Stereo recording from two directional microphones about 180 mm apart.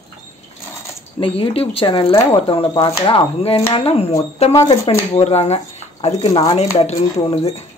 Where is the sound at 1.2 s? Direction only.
30° left (ahead or behind).